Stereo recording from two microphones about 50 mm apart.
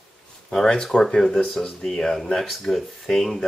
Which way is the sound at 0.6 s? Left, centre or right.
Centre.